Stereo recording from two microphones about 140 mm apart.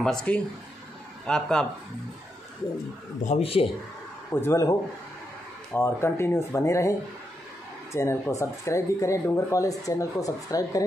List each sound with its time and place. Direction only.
0.0 s a man's voice: 5° left (ahead or behind)
3.3 s speech: 45° left (ahead or behind)
4.3 s a man's voice: 15° left (ahead or behind)
7.9 s speech: 20° left (ahead or behind)